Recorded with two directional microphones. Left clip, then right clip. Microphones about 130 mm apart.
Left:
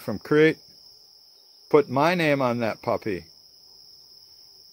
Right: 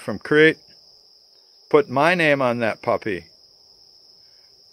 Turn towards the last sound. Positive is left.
turn(degrees=15)  # may be behind; listen again after turning